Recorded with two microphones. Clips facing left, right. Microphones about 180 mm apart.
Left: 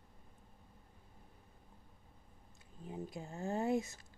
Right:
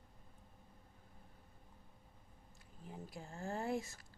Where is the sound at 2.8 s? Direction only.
20° left (ahead or behind).